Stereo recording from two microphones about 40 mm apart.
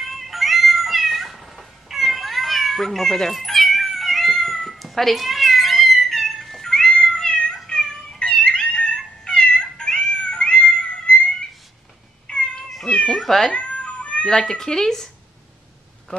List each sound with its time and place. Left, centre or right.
0.0 s cat: centre
7.2 s cat: left
7.5 s music: centre
12.3 s cat: left
13.2 s speech: centre
13.5 s cat: left
14.2 s speech: centre